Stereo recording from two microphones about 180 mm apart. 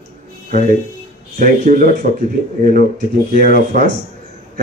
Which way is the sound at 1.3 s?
50° right (ahead or behind).